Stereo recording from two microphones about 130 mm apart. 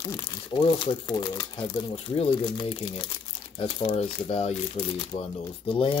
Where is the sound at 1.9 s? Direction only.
50° left (ahead or behind).